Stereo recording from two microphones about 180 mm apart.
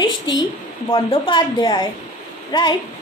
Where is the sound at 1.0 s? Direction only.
25° left (ahead or behind).